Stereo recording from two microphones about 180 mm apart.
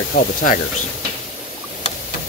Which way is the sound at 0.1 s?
60° left (ahead or behind).